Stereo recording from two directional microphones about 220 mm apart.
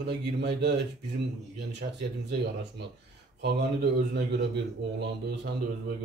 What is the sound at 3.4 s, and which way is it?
Speech, 50° right (ahead or behind).